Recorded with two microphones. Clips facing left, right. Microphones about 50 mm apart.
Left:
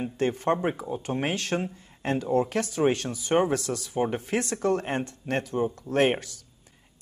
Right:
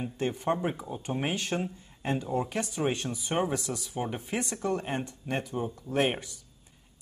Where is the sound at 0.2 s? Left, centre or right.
Left.